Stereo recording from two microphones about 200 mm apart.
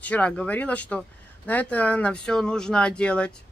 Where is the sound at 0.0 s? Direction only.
5° left (ahead or behind).